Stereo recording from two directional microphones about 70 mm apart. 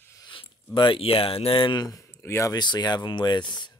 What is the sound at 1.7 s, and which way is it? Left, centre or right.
Speech, left.